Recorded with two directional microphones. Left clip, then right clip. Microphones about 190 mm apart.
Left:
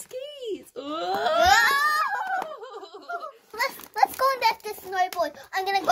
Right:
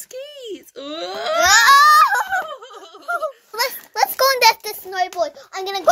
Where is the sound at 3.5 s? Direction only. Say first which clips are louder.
Right 3 dB; 25° right (ahead or behind).